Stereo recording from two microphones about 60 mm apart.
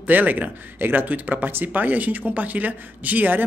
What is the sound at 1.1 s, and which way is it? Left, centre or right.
A man's voice, right.